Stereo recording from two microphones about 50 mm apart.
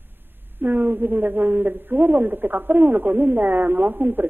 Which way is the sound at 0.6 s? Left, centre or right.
Right.